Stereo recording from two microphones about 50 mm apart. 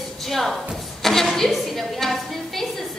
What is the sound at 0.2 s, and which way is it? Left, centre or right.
Speech, centre.